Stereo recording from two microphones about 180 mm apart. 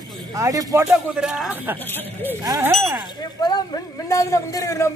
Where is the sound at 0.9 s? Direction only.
5° right (ahead or behind).